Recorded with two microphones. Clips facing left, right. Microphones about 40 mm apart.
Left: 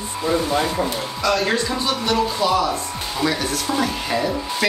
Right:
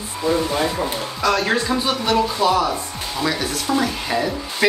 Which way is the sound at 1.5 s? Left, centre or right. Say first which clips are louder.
Right 2 dB; centre.